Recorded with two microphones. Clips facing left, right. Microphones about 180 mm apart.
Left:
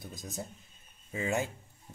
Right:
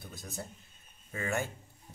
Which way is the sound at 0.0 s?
15° left (ahead or behind).